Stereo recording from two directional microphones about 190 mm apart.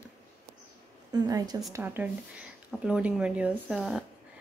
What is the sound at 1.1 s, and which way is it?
A woman's voice, 20° right (ahead or behind).